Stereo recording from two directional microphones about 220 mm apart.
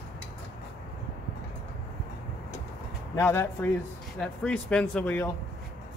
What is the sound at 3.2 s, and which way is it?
Speech, 10° left (ahead or behind).